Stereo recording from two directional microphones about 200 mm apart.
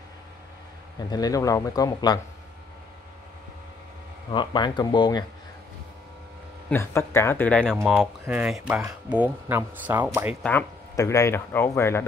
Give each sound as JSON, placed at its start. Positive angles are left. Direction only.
{"t": 0.9, "sound": "speech", "side_deg": 20}
{"t": 4.3, "sound": "speech", "side_deg": 25}
{"t": 6.7, "sound": "speech", "side_deg": 10}
{"t": 10.4, "sound": "speech", "side_deg": 10}